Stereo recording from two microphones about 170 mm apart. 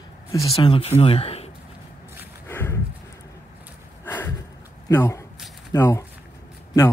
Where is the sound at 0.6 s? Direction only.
35° left (ahead or behind).